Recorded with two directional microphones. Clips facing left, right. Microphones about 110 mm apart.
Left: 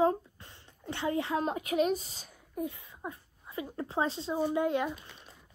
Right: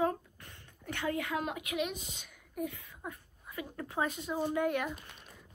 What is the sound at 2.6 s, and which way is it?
A woman's voice, 20° left (ahead or behind).